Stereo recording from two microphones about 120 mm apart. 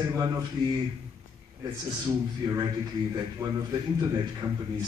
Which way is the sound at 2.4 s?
35° right (ahead or behind).